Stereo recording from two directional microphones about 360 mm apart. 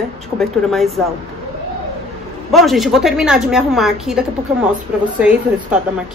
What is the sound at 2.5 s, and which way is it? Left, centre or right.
A woman's voice, centre.